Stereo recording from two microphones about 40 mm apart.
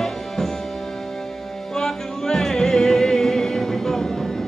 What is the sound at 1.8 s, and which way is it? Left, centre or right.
Music, centre.